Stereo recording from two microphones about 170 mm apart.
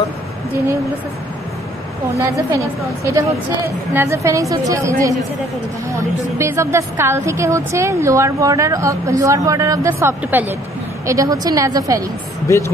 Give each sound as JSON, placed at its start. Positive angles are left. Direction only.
{"t": 2.1, "sound": "a woman's voice", "side_deg": -20}
{"t": 12.4, "sound": "speech", "side_deg": 15}